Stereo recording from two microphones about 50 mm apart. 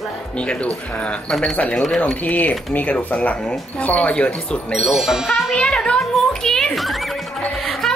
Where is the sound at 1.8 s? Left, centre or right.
Centre.